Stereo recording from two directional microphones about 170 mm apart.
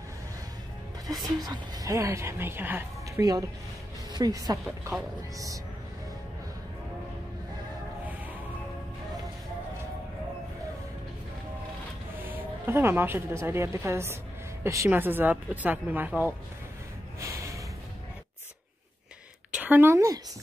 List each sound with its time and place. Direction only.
1.4 s a woman's voice: 20° right (ahead or behind)
4.6 s a woman's voice: 10° right (ahead or behind)
12.2 s a woman's voice: 10° right (ahead or behind)
17.2 s snort: 20° right (ahead or behind)
19.5 s a woman's voice: 10° right (ahead or behind)